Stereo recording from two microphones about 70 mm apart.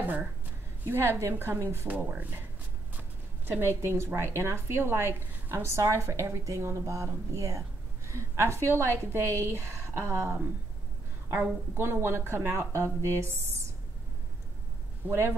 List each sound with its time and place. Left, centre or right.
0.0 s a sound: right
0.8 s speech: right
1.9 s speech: right
11.7 s speech: right
15.0 s speech: right